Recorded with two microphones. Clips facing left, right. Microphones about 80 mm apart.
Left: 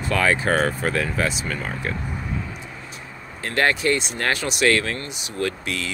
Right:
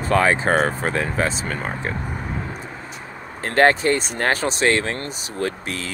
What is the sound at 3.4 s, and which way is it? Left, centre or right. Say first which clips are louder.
Speech: right 5 dB; right.